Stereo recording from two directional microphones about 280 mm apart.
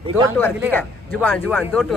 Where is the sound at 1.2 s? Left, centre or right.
Centre.